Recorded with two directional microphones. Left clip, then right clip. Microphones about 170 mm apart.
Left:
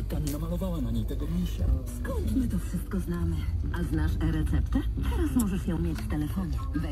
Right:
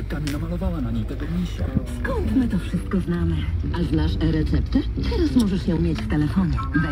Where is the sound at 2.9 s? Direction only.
50° right (ahead or behind).